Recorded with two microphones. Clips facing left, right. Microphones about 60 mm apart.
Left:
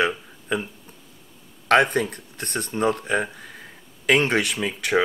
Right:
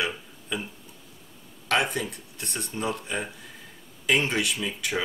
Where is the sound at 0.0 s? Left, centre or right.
Left.